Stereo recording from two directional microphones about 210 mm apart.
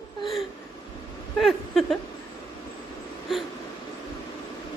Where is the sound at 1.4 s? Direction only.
Centre (ahead or behind).